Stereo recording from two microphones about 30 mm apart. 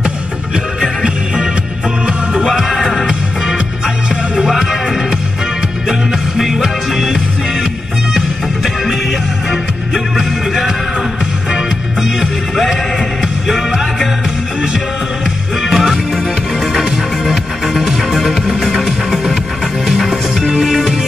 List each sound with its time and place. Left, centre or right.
1.0 s music: right
2.5 s music: centre
3.1 s music: right
5.9 s music: centre
9.5 s music: centre
15.6 s music: centre
17.3 s music: centre